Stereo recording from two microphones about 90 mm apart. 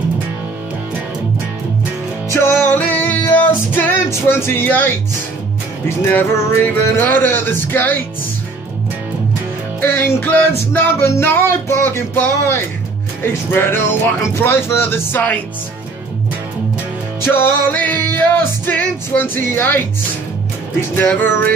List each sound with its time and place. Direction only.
2.2 s music: 30° left (ahead or behind)
6.0 s music: 25° left (ahead or behind)
9.8 s music: 25° left (ahead or behind)
17.3 s music: 25° left (ahead or behind)
20.9 s music: 25° left (ahead or behind)